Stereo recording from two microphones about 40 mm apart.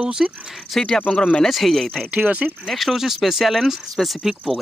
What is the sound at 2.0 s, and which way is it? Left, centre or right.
Speech, right.